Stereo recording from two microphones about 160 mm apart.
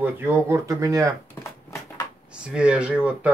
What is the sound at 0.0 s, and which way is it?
Speech, 15° right (ahead or behind).